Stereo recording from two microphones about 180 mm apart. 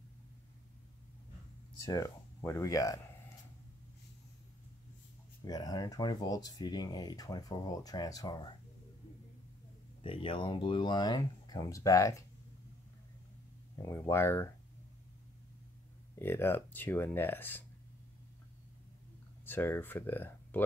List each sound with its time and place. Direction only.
1.8 s speech: 20° left (ahead or behind)
5.4 s speech: 20° left (ahead or behind)
10.0 s speech: 30° left (ahead or behind)
13.8 s speech: 15° left (ahead or behind)
16.2 s speech: 10° left (ahead or behind)
19.4 s speech: 10° left (ahead or behind)